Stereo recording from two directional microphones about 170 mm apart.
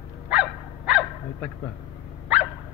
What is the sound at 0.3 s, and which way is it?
Dog, 5° right (ahead or behind).